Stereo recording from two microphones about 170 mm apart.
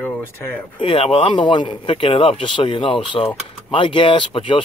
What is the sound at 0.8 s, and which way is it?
Speech, 35° left (ahead or behind).